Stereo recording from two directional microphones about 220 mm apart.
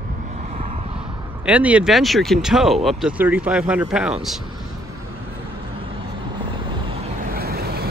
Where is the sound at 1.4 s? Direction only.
5° right (ahead or behind).